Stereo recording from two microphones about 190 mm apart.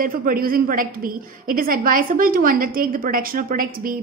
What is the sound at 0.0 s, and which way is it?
A woman's voice, 50° right (ahead or behind).